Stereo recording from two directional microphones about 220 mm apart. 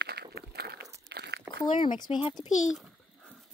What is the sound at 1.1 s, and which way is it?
Crumpling, 50° right (ahead or behind).